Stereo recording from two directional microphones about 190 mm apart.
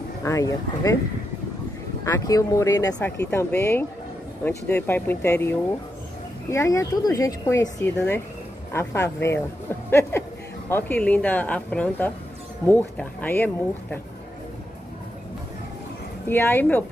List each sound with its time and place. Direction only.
0.2 s speech: 15° left (ahead or behind)
2.0 s speech: 15° left (ahead or behind)
16.3 s speech: 10° left (ahead or behind)